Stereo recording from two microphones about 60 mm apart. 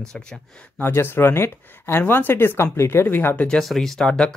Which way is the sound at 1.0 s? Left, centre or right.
Left.